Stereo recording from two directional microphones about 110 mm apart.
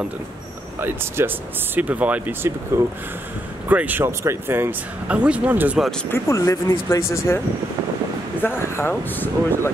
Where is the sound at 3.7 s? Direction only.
15° right (ahead or behind).